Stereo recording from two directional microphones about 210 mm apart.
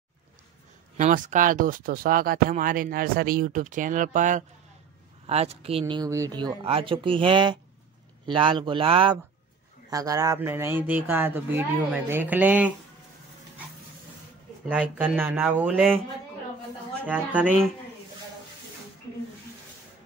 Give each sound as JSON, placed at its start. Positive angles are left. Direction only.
{"t": 0.9, "sound": "speech", "side_deg": -40}
{"t": 14.7, "sound": "speech", "side_deg": -5}
{"t": 17.0, "sound": "speech", "side_deg": -5}